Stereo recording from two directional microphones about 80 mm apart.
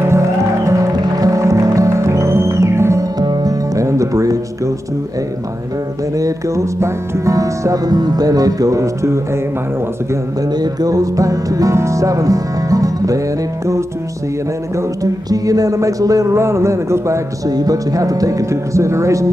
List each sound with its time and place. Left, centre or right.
0.7 s music: right
3.2 s music: right
3.7 s music: right
6.1 s music: right
10.6 s music: right
15.2 s music: right
17.5 s speech: right